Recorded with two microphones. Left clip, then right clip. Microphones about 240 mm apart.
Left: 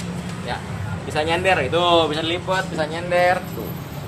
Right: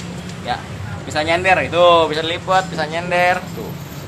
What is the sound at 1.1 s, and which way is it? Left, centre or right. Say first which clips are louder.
Speech: right 4 dB; right.